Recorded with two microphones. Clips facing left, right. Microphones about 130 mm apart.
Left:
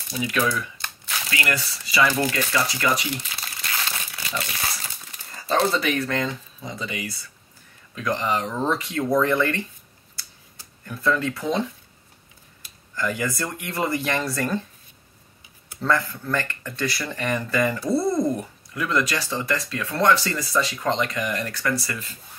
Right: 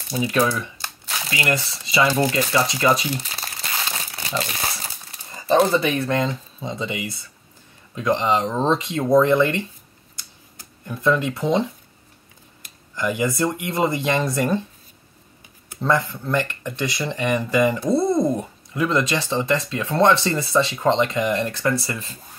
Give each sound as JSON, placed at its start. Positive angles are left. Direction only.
{"t": 0.1, "sound": "speech", "side_deg": -30}
{"t": 5.3, "sound": "speech", "side_deg": -20}
{"t": 10.9, "sound": "speech", "side_deg": -20}
{"t": 12.9, "sound": "speech", "side_deg": -15}
{"t": 15.8, "sound": "speech", "side_deg": -15}